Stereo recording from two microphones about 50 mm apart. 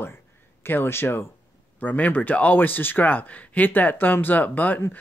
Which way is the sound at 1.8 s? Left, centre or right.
Left.